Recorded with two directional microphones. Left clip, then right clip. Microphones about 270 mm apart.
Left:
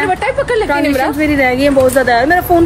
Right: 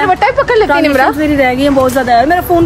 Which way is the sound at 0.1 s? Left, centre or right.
Right.